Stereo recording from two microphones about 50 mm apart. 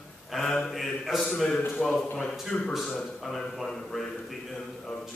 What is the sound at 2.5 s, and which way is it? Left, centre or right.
Speech, left.